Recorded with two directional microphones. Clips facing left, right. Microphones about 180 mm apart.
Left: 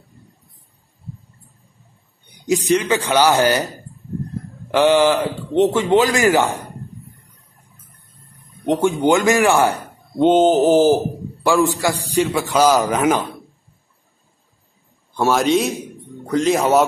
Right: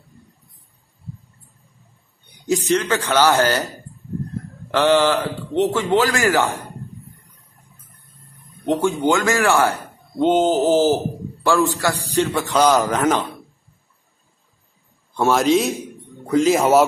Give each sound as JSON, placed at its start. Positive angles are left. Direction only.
{"t": 2.4, "sound": "speech", "side_deg": 15}
{"t": 4.6, "sound": "speech", "side_deg": 15}
{"t": 8.6, "sound": "speech", "side_deg": 15}
{"t": 15.1, "sound": "a man's voice", "side_deg": 0}